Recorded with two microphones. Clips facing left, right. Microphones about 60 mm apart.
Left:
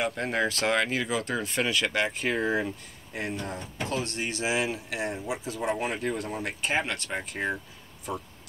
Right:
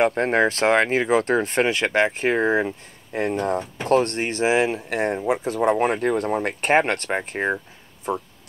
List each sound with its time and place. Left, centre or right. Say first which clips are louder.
0.0 s speech: right 9 dB; right